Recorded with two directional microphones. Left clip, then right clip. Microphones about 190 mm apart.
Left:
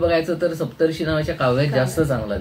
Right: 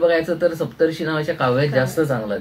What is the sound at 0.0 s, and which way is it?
Speech, 10° right (ahead or behind).